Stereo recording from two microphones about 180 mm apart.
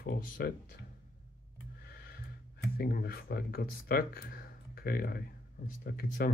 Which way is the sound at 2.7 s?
60° left (ahead or behind).